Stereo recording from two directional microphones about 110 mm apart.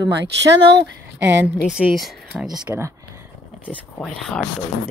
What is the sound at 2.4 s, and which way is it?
Speech, 35° right (ahead or behind).